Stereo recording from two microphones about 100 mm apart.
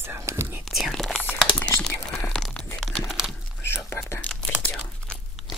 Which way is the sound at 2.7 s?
Centre (ahead or behind).